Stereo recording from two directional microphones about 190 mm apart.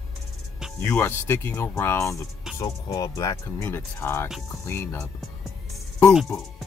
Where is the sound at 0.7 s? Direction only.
10° left (ahead or behind).